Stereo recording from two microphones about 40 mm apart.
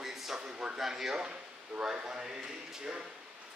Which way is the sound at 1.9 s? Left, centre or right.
Right.